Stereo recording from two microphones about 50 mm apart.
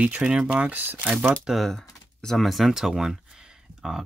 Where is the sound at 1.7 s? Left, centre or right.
Centre.